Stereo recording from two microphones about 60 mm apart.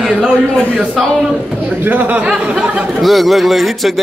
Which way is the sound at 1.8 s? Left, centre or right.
Right.